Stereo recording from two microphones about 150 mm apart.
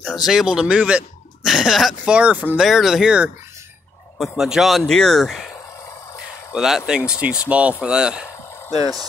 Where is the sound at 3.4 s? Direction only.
20° right (ahead or behind).